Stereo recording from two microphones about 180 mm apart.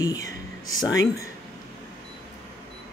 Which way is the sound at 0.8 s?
20° left (ahead or behind).